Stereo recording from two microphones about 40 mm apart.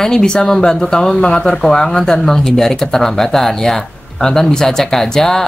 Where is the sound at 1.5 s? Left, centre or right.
Centre.